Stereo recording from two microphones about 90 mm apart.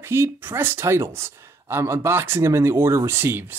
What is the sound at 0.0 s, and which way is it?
Speech, 30° right (ahead or behind).